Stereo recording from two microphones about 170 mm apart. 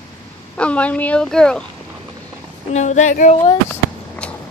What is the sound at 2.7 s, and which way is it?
Female singing, 45° left (ahead or behind).